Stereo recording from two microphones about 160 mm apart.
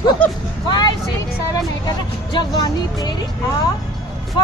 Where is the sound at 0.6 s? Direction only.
30° left (ahead or behind).